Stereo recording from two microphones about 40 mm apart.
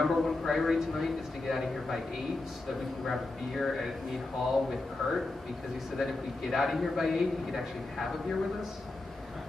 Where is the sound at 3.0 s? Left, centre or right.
Centre.